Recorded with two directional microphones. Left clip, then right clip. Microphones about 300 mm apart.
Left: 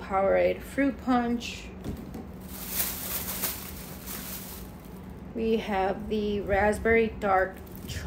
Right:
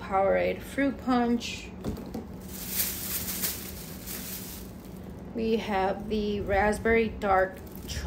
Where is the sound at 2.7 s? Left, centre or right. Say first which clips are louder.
Even; centre.